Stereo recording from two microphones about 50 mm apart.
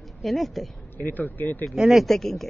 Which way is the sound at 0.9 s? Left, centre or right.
Left.